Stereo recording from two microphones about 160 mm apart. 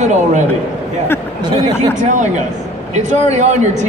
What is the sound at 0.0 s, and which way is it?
Speech, 50° right (ahead or behind).